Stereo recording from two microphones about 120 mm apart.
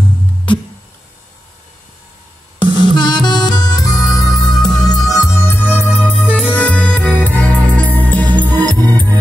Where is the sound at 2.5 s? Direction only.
40° left (ahead or behind).